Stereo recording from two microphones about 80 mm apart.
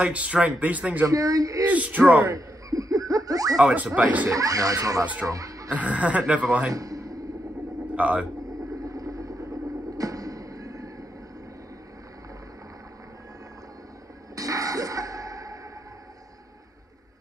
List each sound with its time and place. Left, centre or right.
0.0 s speech: centre
1.0 s speech: right
1.7 s speech: centre
2.2 s laughter: right
3.7 s speech: centre
4.3 s speech: right
5.7 s speech: centre
6.7 s a sound: right
7.9 s a man's voice: centre
8.8 s a sound: right
14.3 s a sound: right